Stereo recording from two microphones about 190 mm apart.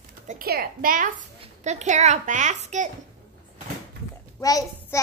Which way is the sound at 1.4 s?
35° right (ahead or behind).